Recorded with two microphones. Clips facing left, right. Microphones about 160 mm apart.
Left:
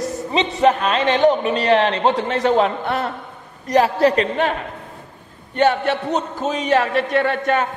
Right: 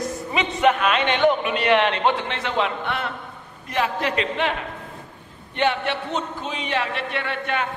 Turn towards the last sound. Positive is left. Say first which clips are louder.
# left 8 dB
turn(degrees=40)  # may be behind; listen again after turning